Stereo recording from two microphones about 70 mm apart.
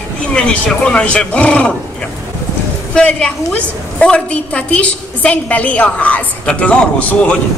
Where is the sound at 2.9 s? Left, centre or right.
Centre.